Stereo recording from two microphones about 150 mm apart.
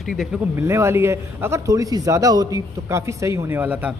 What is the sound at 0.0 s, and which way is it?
Speech, centre (ahead or behind).